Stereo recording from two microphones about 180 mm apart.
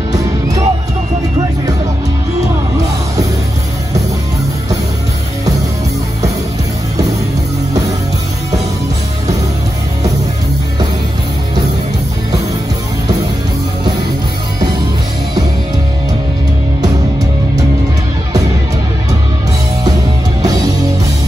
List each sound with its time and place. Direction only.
0.1 s music: 20° right (ahead or behind)